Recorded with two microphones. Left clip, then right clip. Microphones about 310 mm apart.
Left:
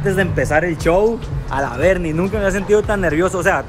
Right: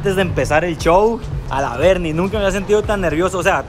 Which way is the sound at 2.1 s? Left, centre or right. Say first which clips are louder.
Right 1 dB; centre.